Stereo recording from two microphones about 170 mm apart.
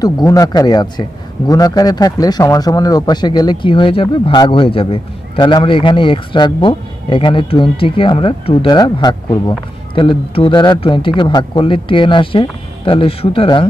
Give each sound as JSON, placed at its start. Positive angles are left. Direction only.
{"t": 0.0, "sound": "speech", "side_deg": 20}